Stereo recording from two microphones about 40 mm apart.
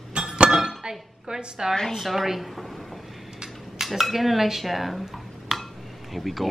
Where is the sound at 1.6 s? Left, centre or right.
Centre.